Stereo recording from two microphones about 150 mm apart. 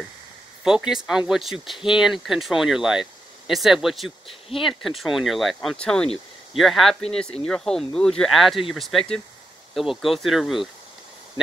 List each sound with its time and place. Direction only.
0.7 s speech: 5° right (ahead or behind)
4.3 s speech: 40° left (ahead or behind)
4.6 s speech: centre (ahead or behind)